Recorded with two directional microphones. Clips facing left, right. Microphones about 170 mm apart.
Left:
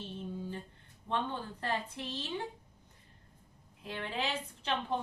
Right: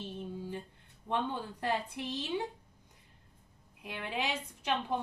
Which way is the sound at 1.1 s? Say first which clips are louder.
Right 1 dB; 10° right (ahead or behind).